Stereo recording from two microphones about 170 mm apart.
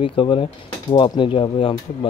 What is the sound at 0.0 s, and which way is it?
Speech, 30° left (ahead or behind).